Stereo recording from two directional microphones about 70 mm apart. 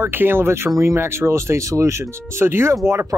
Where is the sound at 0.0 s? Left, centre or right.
Right.